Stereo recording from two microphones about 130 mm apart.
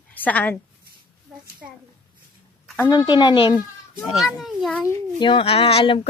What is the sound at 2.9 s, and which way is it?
Speech, 35° left (ahead or behind).